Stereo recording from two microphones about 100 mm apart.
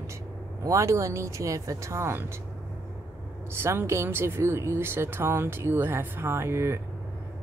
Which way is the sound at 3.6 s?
25° right (ahead or behind).